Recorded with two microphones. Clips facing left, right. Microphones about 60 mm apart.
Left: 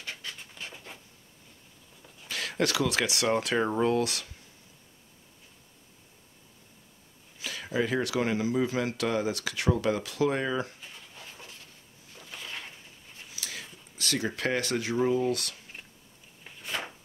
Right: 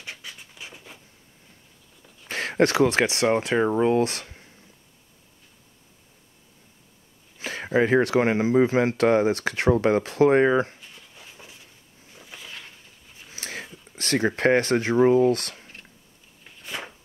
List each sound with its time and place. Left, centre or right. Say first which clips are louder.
0.0 s dog: right 1 dB; centre
2.2 s speech: right 8 dB; right
3.6 s speech: right 5 dB; centre
3.9 s speech: right 6 dB; right
7.3 s speech: right 8 dB; right
10.8 s a sound: even; centre
12.4 s a sound: left 2 dB; centre
13.3 s a sound: right 6 dB; right
13.9 s speech: right 7 dB; right